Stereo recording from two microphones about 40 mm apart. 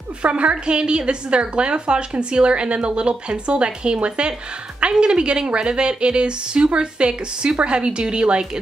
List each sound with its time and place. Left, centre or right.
0.2 s a woman's voice: right